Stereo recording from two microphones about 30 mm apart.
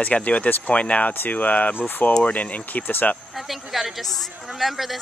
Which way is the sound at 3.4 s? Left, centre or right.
Centre.